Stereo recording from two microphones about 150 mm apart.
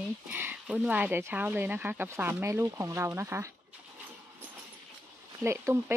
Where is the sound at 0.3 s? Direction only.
10° right (ahead or behind).